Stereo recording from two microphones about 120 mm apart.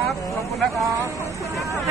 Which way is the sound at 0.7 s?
25° right (ahead or behind).